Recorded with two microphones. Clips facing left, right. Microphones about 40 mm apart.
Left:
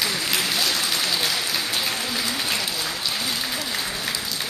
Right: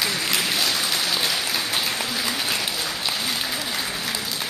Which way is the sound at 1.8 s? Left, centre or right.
Centre.